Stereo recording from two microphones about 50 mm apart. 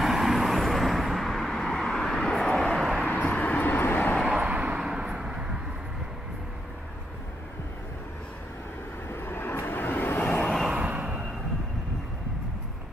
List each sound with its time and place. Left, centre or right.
0.0 s vehicle: centre
3.1 s vehicle: left
4.2 s vehicle: centre
4.6 s a sound: right
4.8 s vehicle: centre
9.1 s vehicle: left
10.7 s a sound: right